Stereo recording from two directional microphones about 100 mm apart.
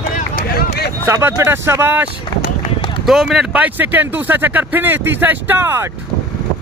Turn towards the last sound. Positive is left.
turn(degrees=-25)  # may be behind; listen again after turning